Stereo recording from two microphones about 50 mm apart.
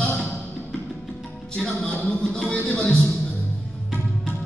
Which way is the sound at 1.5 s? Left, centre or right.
Centre.